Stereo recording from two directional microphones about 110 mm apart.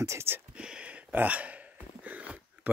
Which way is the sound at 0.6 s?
10° right (ahead or behind).